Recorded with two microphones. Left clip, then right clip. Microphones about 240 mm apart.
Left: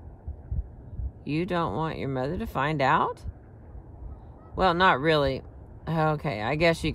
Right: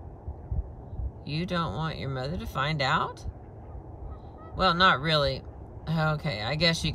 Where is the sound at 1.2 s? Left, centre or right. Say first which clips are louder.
Left 4 dB; centre.